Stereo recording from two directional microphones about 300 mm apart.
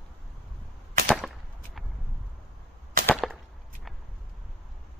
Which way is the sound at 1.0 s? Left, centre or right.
Centre.